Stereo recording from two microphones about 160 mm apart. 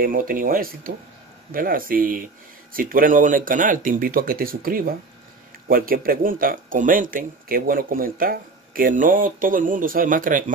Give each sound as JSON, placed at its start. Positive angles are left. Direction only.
{"t": 0.0, "sound": "speech", "side_deg": -60}